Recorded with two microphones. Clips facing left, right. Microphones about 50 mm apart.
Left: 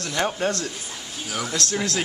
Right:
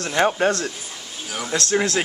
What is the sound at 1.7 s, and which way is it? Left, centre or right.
Speech, right.